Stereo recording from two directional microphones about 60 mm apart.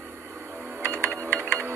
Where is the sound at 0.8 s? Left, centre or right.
Right.